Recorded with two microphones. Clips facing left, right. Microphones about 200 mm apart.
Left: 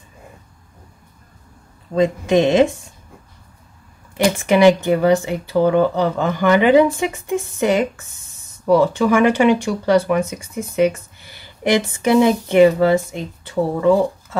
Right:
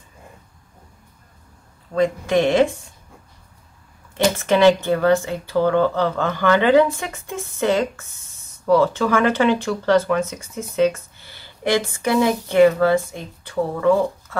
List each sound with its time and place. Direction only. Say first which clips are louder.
2.0 s speech: left 3 dB; 20° left (ahead or behind)
4.4 s speech: left 2 dB; 15° left (ahead or behind)